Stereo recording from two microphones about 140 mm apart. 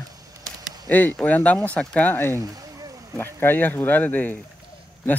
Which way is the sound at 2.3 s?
25° right (ahead or behind).